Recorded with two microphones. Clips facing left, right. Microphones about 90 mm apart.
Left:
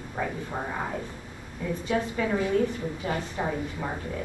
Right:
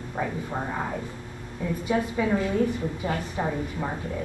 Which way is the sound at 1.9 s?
10° right (ahead or behind).